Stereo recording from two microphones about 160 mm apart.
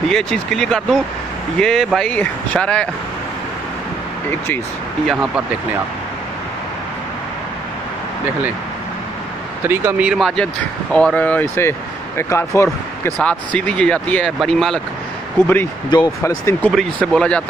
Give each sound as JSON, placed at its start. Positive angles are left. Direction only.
{"t": 0.1, "sound": "speech", "side_deg": 5}
{"t": 5.1, "sound": "speech", "side_deg": -5}
{"t": 9.7, "sound": "speech", "side_deg": -10}
{"t": 15.4, "sound": "speech", "side_deg": 10}
{"t": 15.9, "sound": "speech", "side_deg": 25}
{"t": 16.7, "sound": "speech", "side_deg": 5}